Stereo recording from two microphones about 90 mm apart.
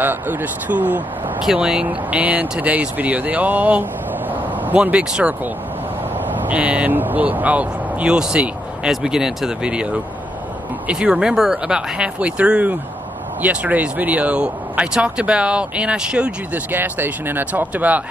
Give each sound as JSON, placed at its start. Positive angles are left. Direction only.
{"t": 0.0, "sound": "speech", "side_deg": -20}
{"t": 1.4, "sound": "speech", "side_deg": -5}